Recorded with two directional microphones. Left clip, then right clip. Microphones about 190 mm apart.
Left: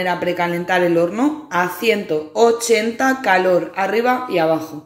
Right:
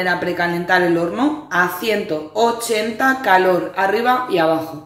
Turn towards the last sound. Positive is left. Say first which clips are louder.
# right 1 dB
turn(degrees=30)  # may be behind; listen again after turning